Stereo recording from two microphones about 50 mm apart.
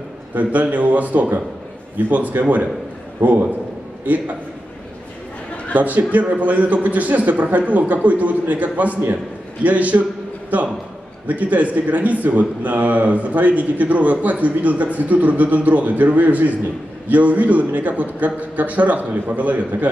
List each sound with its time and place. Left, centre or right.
0.3 s a man's voice: right
5.7 s a man's voice: right